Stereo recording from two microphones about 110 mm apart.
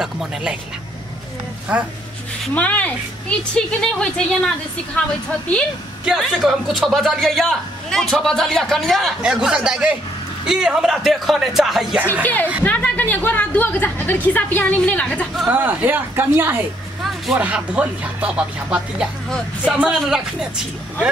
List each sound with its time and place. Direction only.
0.0 s a man's voice: 5° right (ahead or behind)
1.7 s speech: 10° right (ahead or behind)
2.5 s a woman's voice: 15° left (ahead or behind)
6.0 s a man's voice: 5° right (ahead or behind)
12.1 s a woman's voice: 15° left (ahead or behind)
15.5 s a man's voice: 15° right (ahead or behind)